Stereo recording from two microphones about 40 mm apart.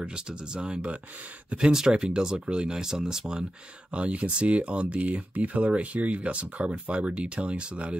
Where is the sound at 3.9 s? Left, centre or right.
Right.